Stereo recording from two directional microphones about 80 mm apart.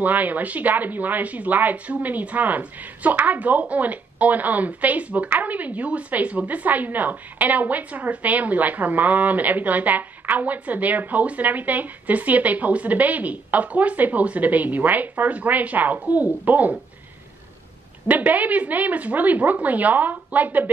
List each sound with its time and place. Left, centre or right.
0.0 s speech: right
18.0 s speech: right